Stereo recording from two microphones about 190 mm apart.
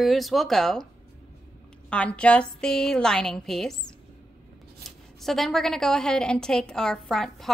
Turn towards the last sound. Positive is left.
turn(degrees=0)  # may be behind; listen again after turning